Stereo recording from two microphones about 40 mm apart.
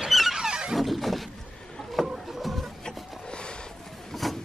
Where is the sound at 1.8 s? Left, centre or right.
Centre.